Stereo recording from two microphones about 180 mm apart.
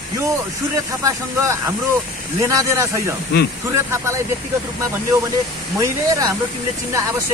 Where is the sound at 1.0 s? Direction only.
15° right (ahead or behind).